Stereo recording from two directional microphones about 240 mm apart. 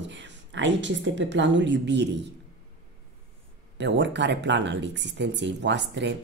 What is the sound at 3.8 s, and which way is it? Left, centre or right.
Speech, right.